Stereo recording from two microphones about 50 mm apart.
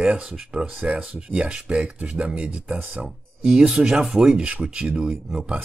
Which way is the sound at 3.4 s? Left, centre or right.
Centre.